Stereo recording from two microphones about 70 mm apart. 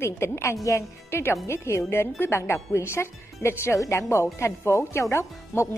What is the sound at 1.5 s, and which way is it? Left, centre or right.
A woman's voice, left.